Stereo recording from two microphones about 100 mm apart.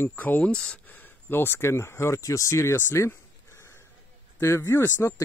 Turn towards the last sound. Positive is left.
turn(degrees=30)  # may be behind; listen again after turning